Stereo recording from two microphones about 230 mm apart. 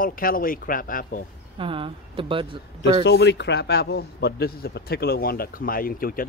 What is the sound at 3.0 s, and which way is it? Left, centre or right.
A man's voice, left.